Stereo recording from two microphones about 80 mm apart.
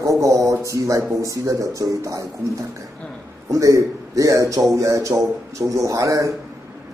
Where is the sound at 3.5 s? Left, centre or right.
Right.